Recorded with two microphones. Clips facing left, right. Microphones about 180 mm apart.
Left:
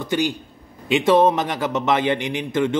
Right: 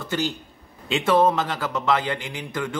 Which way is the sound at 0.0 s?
15° left (ahead or behind).